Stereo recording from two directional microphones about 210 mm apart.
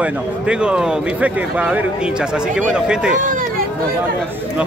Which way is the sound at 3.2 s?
40° right (ahead or behind).